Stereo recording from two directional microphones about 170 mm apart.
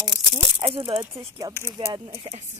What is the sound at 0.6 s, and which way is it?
Speech, 25° right (ahead or behind).